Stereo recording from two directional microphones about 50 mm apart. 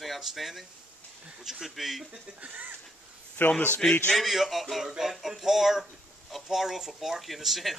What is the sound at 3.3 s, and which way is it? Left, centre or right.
Speech, left.